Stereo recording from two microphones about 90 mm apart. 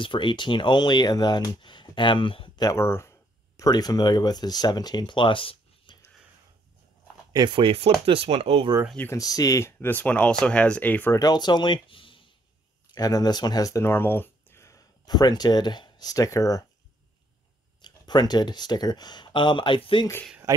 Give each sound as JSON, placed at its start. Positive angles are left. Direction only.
{"t": 0.0, "sound": "speech", "side_deg": 65}
{"t": 2.8, "sound": "speech", "side_deg": 30}
{"t": 7.4, "sound": "speech", "side_deg": -75}
{"t": 9.1, "sound": "speech", "side_deg": 40}
{"t": 11.1, "sound": "speech", "side_deg": 50}
{"t": 12.9, "sound": "speech", "side_deg": 45}
{"t": 15.0, "sound": "speech", "side_deg": 50}
{"t": 17.8, "sound": "speech", "side_deg": 55}
{"t": 20.5, "sound": "speech", "side_deg": -35}